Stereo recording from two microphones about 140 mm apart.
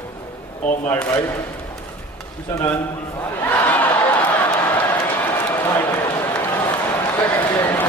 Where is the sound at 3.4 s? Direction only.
15° left (ahead or behind).